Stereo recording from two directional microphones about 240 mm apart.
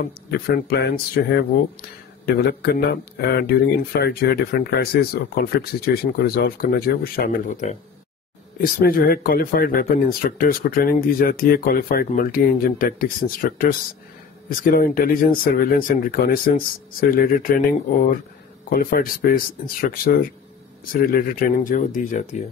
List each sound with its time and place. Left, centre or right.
0.3 s speech: left
18.7 s speech: left